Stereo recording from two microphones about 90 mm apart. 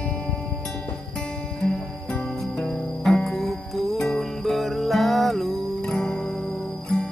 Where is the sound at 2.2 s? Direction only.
Centre (ahead or behind).